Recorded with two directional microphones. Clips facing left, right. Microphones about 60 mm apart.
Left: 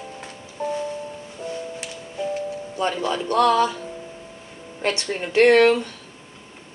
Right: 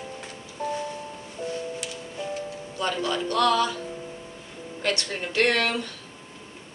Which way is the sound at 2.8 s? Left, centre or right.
Left.